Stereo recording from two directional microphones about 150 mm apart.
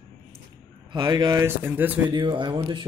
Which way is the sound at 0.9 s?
30° right (ahead or behind).